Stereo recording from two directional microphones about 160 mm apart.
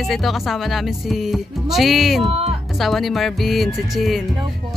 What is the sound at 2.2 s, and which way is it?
Speech, 35° right (ahead or behind).